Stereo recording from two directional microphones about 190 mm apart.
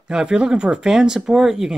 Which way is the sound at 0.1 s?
5° right (ahead or behind).